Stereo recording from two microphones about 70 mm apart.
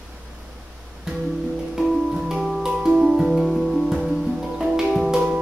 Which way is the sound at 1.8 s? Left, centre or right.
Centre.